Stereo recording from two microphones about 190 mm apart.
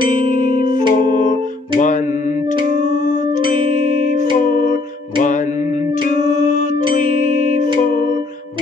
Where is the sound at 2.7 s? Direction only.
40° left (ahead or behind).